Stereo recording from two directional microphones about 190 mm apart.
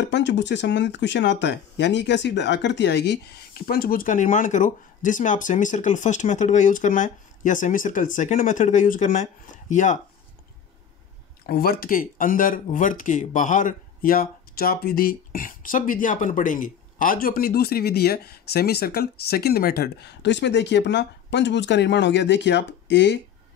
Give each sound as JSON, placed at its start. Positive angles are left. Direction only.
{"t": 0.1, "sound": "speech", "side_deg": 70}
{"t": 11.4, "sound": "speech", "side_deg": 55}